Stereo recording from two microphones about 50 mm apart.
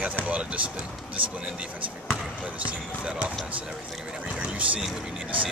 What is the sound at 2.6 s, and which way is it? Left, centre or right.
Speech, right.